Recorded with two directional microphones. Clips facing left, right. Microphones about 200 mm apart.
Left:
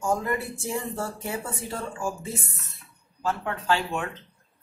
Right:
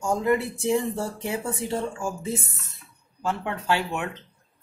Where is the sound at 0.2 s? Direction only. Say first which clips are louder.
Right 6 dB; 20° right (ahead or behind).